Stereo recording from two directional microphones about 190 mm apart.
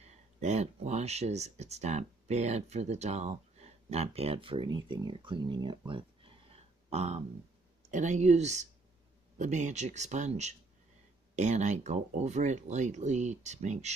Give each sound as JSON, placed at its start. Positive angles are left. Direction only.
{"t": 0.0, "sound": "speech", "side_deg": -35}